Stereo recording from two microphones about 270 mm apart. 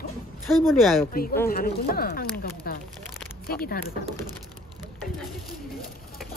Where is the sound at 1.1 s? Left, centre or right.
Left.